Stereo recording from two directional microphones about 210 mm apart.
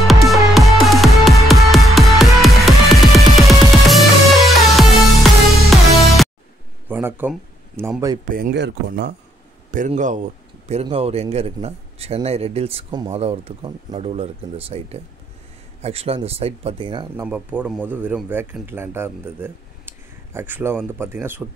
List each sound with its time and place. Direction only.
0.0 s music: centre (ahead or behind)
6.9 s speech: 10° right (ahead or behind)
8.3 s speech: 45° right (ahead or behind)
9.7 s speech: 35° right (ahead or behind)
17.2 s speech: 5° right (ahead or behind)